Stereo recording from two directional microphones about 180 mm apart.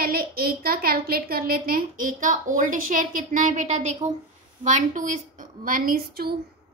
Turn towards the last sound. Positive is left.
turn(degrees=-60)  # may be behind; listen again after turning